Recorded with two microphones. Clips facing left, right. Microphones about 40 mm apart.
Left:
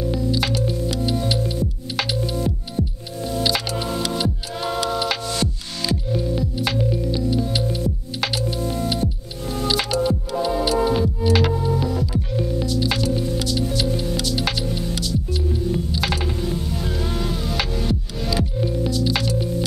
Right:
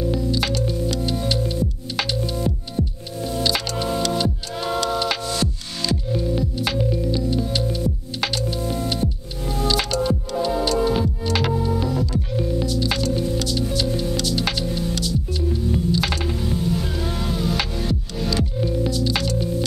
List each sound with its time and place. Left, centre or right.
0.0 s music: centre